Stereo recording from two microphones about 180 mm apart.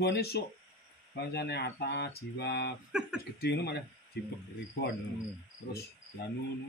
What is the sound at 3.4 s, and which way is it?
Speech, 65° left (ahead or behind).